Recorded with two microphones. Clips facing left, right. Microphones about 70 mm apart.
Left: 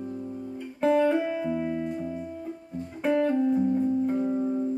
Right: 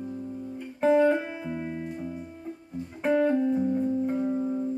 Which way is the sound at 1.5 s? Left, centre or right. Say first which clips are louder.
Left 5 dB; centre.